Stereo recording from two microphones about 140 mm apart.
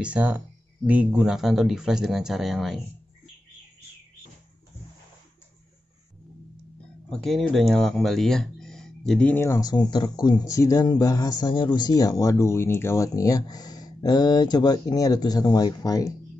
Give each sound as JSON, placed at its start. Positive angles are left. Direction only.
{"t": 0.0, "sound": "a man's voice", "side_deg": -10}
{"t": 7.1, "sound": "speech", "side_deg": 5}
{"t": 9.3, "sound": "speech", "side_deg": 20}